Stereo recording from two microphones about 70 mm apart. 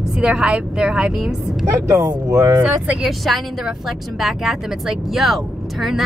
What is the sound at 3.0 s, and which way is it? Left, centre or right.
Speech, centre.